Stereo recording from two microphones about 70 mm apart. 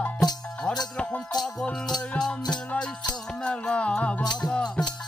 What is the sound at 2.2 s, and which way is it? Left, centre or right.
Music, centre.